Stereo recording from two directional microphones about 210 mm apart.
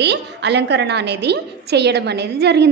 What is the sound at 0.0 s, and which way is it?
A woman's voice, 55° right (ahead or behind).